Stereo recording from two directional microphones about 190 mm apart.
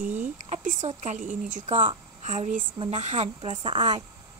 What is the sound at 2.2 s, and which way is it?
Speech, 40° right (ahead or behind).